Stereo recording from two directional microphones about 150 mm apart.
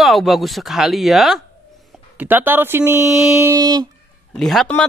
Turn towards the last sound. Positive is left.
turn(degrees=5)  # may be behind; listen again after turning